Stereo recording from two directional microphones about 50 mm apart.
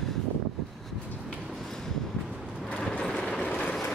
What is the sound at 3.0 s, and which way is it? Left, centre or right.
Vehicle, centre.